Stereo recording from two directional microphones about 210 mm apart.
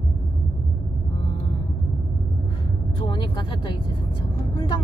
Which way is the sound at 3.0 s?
20° left (ahead or behind).